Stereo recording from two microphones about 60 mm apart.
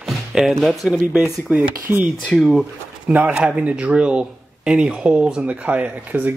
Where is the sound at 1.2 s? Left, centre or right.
Right.